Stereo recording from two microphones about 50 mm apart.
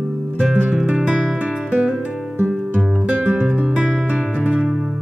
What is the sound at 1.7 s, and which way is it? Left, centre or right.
Music, right.